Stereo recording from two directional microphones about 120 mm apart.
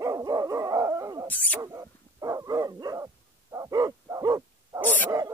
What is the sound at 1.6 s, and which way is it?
Dog, 30° right (ahead or behind).